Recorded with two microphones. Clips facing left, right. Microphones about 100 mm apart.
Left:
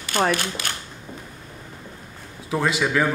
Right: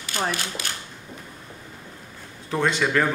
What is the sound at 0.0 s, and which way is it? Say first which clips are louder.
Speech: left 6 dB; 65° left (ahead or behind).